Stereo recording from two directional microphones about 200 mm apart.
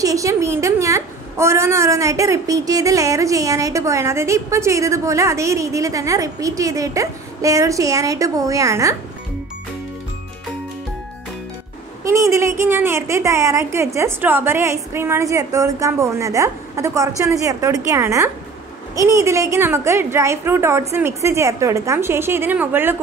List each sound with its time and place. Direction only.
0.0 s a woman's voice: 15° right (ahead or behind)
12.0 s a woman's voice: 15° right (ahead or behind)